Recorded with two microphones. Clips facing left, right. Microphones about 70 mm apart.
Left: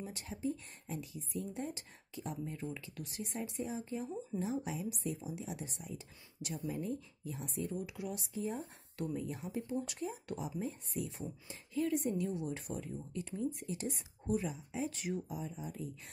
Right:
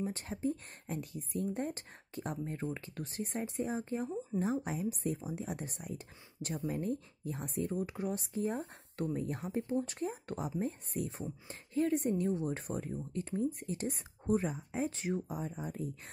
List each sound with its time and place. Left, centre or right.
0.0 s speech: right
14.9 s speech: right
15.2 s speech: right